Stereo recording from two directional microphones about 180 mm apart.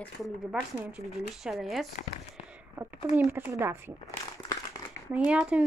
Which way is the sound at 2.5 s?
10° right (ahead or behind).